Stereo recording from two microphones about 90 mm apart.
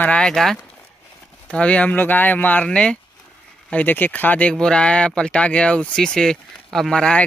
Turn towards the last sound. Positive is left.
turn(degrees=10)  # may be behind; listen again after turning